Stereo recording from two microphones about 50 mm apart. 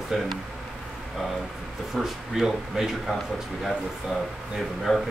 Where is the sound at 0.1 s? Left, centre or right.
Centre.